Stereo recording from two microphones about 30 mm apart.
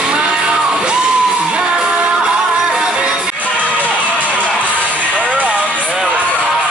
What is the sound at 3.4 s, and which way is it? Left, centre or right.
Music, left.